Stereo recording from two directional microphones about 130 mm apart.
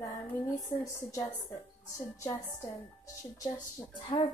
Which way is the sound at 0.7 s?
45° left (ahead or behind).